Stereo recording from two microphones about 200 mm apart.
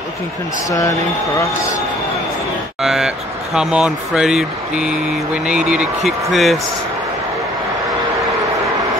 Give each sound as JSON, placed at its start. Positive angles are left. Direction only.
{"t": 0.7, "sound": "speech", "side_deg": 15}
{"t": 2.8, "sound": "speech", "side_deg": 0}